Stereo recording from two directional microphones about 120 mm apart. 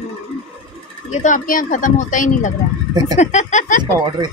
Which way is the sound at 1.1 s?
90° left.